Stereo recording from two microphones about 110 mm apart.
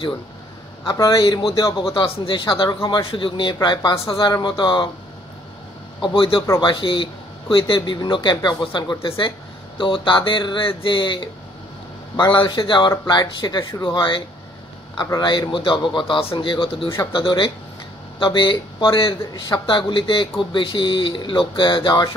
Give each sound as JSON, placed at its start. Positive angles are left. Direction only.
{"t": 0.8, "sound": "speech", "side_deg": 35}
{"t": 2.0, "sound": "speech", "side_deg": 50}
{"t": 4.0, "sound": "speech", "side_deg": 55}
{"t": 4.3, "sound": "speech", "side_deg": 45}
{"t": 5.9, "sound": "speech", "side_deg": 50}